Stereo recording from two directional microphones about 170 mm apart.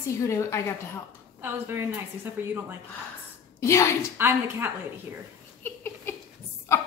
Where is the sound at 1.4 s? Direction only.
10° right (ahead or behind).